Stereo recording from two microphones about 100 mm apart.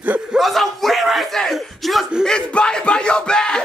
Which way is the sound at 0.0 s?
15° right (ahead or behind).